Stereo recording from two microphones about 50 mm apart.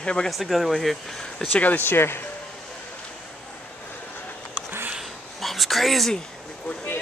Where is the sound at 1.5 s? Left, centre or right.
Left.